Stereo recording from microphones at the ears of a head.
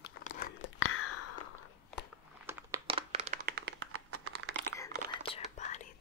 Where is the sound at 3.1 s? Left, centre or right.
Right.